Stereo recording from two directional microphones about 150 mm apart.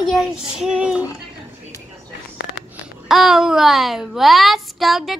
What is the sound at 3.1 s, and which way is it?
A child's voice, 5° right (ahead or behind).